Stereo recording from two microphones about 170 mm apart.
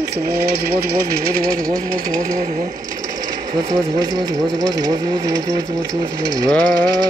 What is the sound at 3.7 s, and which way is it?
Ratchet, 20° right (ahead or behind).